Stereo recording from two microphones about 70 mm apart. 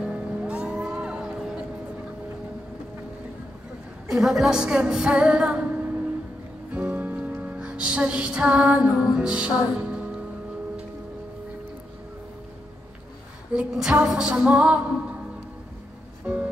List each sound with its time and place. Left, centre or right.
0.0 s music: centre
4.1 s music: centre
13.5 s music: centre
16.3 s music: centre